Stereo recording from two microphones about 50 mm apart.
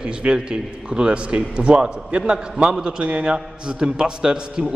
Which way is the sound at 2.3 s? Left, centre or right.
Centre.